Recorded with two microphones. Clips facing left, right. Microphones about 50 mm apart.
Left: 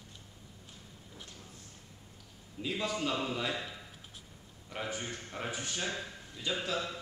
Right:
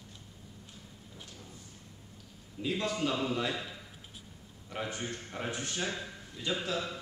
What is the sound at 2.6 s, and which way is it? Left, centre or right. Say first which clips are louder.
A man's voice: right 2 dB; centre.